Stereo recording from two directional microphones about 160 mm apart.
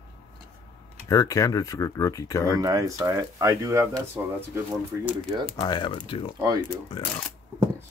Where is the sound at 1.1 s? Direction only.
20° left (ahead or behind).